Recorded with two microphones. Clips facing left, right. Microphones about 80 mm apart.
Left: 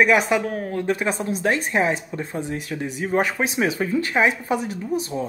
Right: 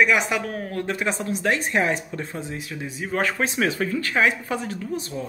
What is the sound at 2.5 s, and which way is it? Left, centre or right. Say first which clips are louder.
Speech: left 4 dB; left.